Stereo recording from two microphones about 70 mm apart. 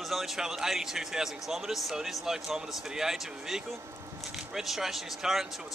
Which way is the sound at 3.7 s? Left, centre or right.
Right.